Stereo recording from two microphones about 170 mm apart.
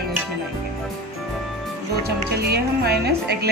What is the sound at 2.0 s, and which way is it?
Music, 70° right (ahead or behind).